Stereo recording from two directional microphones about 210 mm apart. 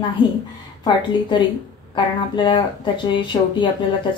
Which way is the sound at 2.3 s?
20° left (ahead or behind).